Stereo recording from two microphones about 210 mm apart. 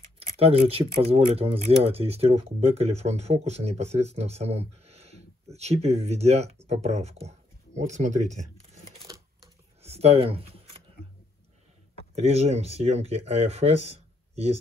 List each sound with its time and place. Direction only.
0.2 s speech: 30° right (ahead or behind)
9.8 s shuffling cards: 30° right (ahead or behind)
12.2 s speech: 30° right (ahead or behind)